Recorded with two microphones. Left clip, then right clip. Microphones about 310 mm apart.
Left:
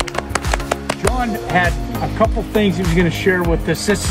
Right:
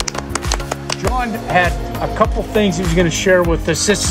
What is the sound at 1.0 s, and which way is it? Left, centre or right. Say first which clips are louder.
Music: even; right.